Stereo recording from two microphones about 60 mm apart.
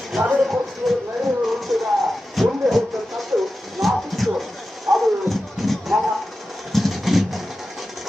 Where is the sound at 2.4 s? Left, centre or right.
Centre.